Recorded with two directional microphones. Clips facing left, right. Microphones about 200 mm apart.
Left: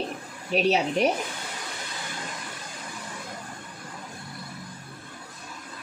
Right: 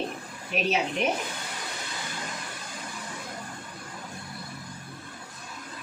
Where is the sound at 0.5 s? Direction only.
35° left (ahead or behind).